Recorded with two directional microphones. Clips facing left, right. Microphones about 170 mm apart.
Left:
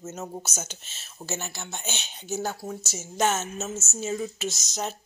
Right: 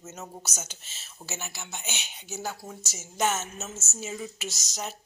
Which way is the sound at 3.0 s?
20° left (ahead or behind).